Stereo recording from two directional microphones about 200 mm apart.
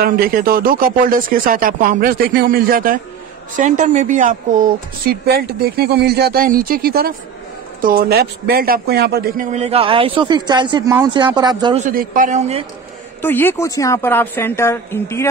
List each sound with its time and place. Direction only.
0.0 s speech: 45° right (ahead or behind); by 11.8 s 20° right (ahead or behind)
11.8 s a man's voice: 45° right (ahead or behind)
13.2 s a woman's voice: 10° left (ahead or behind)